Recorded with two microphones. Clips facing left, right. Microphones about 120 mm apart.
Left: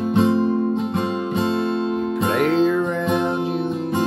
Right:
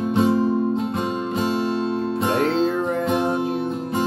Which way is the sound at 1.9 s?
30° right (ahead or behind).